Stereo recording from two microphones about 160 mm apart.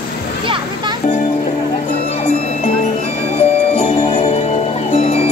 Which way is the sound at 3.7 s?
35° left (ahead or behind).